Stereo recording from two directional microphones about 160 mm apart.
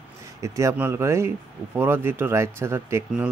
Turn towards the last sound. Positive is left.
turn(degrees=-15)  # may be behind; listen again after turning